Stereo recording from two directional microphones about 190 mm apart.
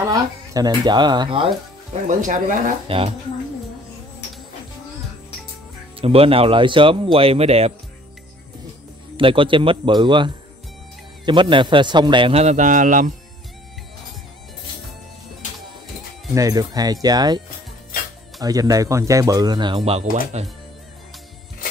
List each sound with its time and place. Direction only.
0.1 s speech: 20° right (ahead or behind)
2.0 s speech: 40° right (ahead or behind)
2.9 s speech: 30° right (ahead or behind)
5.9 s speech: 30° right (ahead or behind)
9.1 s speech: 25° right (ahead or behind); by 13.1 s 45° right (ahead or behind)
16.3 s speech: 20° right (ahead or behind)
18.4 s speech: 20° right (ahead or behind); by 20.4 s 35° right (ahead or behind)